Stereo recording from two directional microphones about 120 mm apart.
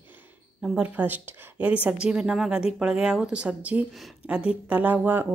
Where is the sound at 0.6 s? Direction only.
5° right (ahead or behind).